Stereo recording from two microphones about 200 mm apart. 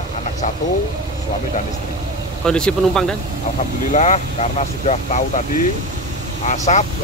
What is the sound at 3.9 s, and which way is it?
Speech, 35° left (ahead or behind).